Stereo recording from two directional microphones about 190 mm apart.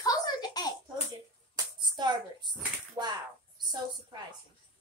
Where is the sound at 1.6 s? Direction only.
20° right (ahead or behind).